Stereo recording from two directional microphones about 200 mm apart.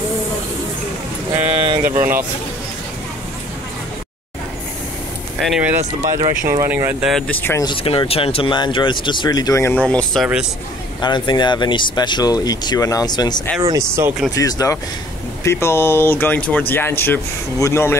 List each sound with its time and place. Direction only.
1.5 s a sound: 25° right (ahead or behind)
1.8 s speech: 10° right (ahead or behind)
5.4 s speech: 5° right (ahead or behind)
7.6 s speech: 25° left (ahead or behind); by 10.4 s centre (ahead or behind)
11.0 s speech: 20° left (ahead or behind)
13.6 s speech: 15° right (ahead or behind)
14.3 s speech: 15° left (ahead or behind)